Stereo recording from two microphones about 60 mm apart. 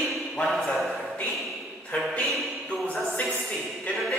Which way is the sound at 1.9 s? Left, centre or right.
Centre.